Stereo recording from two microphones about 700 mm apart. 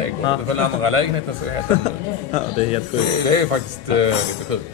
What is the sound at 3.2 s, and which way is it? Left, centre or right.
Speech, right.